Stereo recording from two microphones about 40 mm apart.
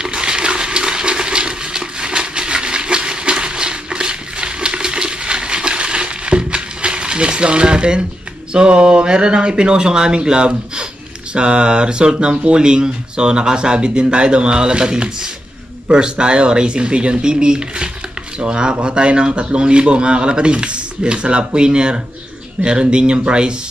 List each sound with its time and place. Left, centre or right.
0.0 s water: right
8.5 s a man's voice: right